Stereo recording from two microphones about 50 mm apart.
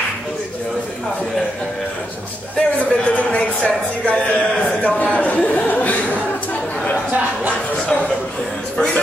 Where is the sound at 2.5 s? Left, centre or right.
Left.